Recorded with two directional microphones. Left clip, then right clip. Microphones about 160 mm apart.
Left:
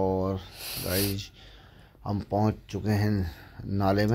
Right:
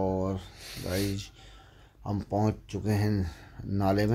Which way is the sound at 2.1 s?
5° right (ahead or behind).